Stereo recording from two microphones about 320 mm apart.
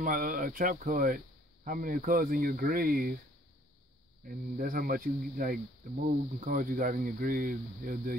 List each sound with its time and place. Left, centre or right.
0.0 s speech: right
4.3 s speech: right